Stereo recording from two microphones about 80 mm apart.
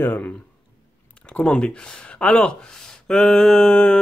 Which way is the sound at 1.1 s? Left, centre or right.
Centre.